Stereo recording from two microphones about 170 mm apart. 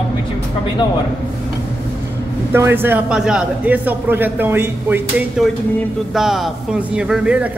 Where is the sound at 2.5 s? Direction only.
15° right (ahead or behind).